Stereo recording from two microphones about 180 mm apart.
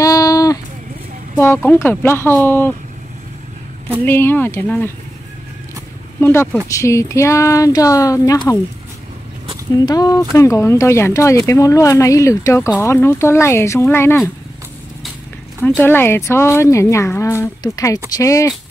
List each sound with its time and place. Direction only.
0.0 s a sound: 20° left (ahead or behind)
1.4 s speech: 10° left (ahead or behind)
4.0 s speech: 10° left (ahead or behind)
6.2 s speech: 15° left (ahead or behind)
9.8 s speech: 20° left (ahead or behind)
15.8 s speech: 10° left (ahead or behind)